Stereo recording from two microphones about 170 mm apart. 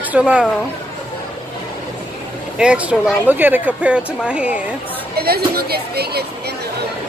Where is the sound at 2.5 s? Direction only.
5° right (ahead or behind).